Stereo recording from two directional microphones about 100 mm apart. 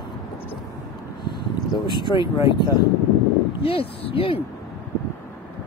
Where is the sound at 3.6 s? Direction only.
70° left (ahead or behind).